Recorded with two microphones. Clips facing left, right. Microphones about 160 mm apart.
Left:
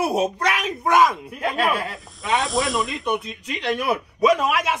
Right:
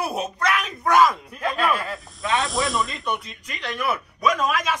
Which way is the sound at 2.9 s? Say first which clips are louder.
Left 4 dB; 20° left (ahead or behind).